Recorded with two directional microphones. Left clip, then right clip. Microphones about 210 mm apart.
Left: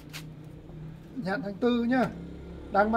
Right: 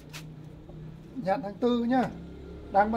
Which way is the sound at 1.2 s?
5° left (ahead or behind).